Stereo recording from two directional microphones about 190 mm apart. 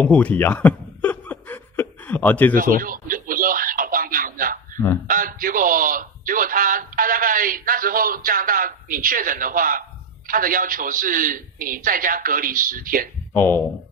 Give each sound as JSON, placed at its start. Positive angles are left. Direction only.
{"t": 0.0, "sound": "chuckle", "side_deg": 5}
{"t": 2.5, "sound": "a sound", "side_deg": -45}
{"t": 5.0, "sound": "speech", "side_deg": -45}
{"t": 13.3, "sound": "speech", "side_deg": 10}